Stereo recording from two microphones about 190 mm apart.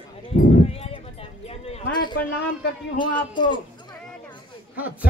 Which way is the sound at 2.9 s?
25° left (ahead or behind).